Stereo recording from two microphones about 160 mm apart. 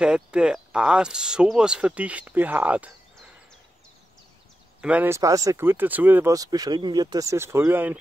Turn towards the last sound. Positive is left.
turn(degrees=-15)  # may be behind; listen again after turning